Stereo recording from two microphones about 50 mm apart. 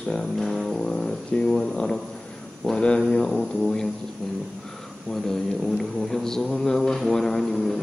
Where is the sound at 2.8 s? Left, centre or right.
Centre.